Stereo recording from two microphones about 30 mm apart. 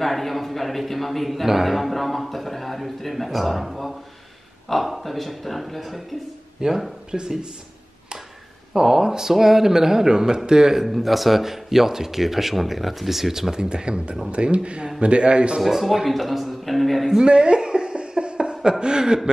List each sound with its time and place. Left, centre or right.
0.0 s a man's voice: centre
6.6 s speech: right
8.7 s speech: centre
10.8 s a man's voice: centre; by 15.6 s right
15.6 s a man's voice: centre
17.2 s laughter: right